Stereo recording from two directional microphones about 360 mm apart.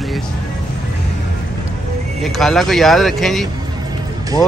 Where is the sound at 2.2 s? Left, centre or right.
Centre.